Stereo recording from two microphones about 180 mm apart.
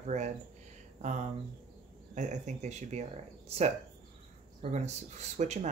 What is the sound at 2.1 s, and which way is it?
Speech, 45° right (ahead or behind).